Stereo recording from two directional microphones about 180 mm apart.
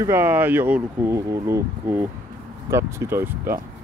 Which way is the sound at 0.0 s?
15° right (ahead or behind).